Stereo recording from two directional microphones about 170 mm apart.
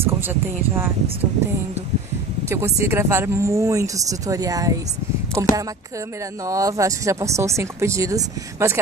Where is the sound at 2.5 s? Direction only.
15° right (ahead or behind).